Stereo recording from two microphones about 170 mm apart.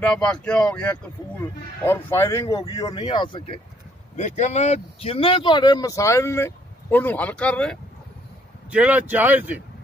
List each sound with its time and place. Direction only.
0.0 s a man's voice: 5° left (ahead or behind)
2.4 s speech: 30° left (ahead or behind)
4.2 s speech: 45° left (ahead or behind); by 7.8 s 5° left (ahead or behind)
8.6 s speech: 10° right (ahead or behind)